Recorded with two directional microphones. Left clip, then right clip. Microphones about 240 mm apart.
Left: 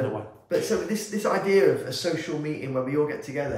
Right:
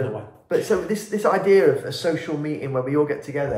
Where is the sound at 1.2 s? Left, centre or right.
Centre.